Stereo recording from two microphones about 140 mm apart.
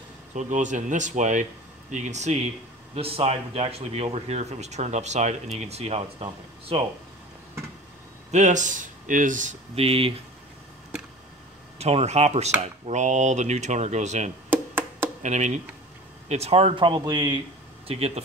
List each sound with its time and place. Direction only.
0.3 s speech: 60° right (ahead or behind)
3.0 s speech: 45° right (ahead or behind)
8.3 s speech: 55° right (ahead or behind)
9.8 s speech: 45° right (ahead or behind)
11.8 s speech: 50° right (ahead or behind)
14.5 s a sound: 15° right (ahead or behind)
15.2 s speech: 55° right (ahead or behind); by 17.4 s 30° right (ahead or behind)
17.8 s speech: 45° right (ahead or behind)